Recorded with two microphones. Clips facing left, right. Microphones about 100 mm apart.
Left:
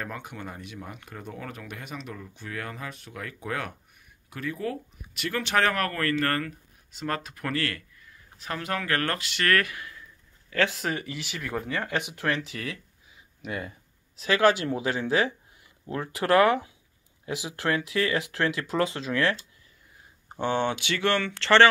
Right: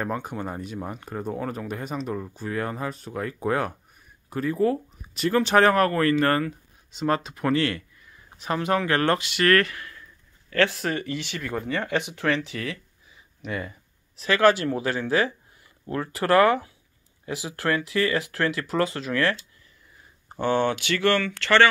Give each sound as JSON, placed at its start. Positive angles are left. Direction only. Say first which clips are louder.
{"t": 0.0, "sound": "speech", "louder": "right 7 dB", "side_deg": -35}
{"t": 9.5, "sound": "speech", "louder": "right 4 dB", "side_deg": 10}
{"t": 17.7, "sound": "speech", "louder": "right 3 dB", "side_deg": 5}
{"t": 20.3, "sound": "speech", "louder": "right 3 dB", "side_deg": 15}